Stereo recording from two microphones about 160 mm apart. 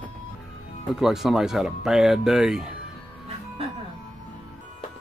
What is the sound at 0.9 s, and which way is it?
Speech, centre (ahead or behind).